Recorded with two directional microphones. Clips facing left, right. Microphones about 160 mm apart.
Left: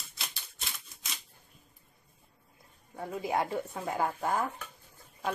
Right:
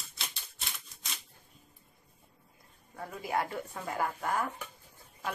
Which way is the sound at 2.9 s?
20° left (ahead or behind).